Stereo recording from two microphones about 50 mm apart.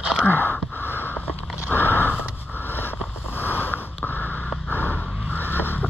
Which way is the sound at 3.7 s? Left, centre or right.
Left.